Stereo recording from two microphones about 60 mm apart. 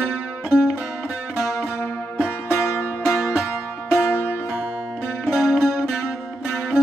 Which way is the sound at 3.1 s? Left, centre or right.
Centre.